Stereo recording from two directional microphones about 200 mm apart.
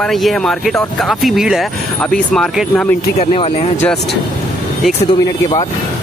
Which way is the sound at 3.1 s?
30° left (ahead or behind).